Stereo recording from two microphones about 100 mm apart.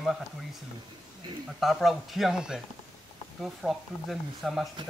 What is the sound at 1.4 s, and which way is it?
Speech, centre (ahead or behind).